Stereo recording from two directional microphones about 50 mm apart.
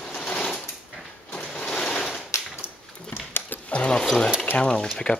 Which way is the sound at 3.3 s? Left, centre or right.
Left.